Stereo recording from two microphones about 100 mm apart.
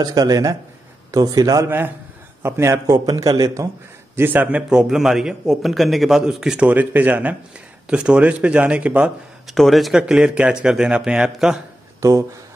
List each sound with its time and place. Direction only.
0.0 s a man's voice: 40° right (ahead or behind)
2.4 s a man's voice: 25° right (ahead or behind)
2.9 s a man's voice: 35° right (ahead or behind)
4.2 s a man's voice: 20° right (ahead or behind)
9.5 s a man's voice: centre (ahead or behind)
12.0 s speech: 35° right (ahead or behind)